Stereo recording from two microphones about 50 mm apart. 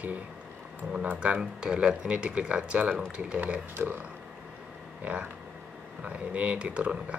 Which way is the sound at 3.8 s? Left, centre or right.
Right.